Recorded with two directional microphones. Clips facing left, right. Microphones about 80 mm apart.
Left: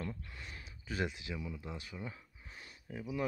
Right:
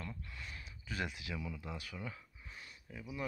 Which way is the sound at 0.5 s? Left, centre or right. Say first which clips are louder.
Left 4 dB; left.